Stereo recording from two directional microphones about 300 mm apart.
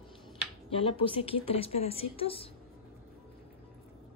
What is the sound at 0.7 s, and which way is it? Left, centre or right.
Speech, centre.